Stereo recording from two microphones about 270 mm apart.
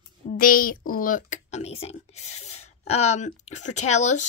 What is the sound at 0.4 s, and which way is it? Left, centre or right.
A woman's voice, left.